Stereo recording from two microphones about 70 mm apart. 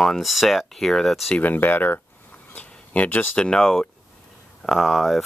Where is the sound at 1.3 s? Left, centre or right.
Left.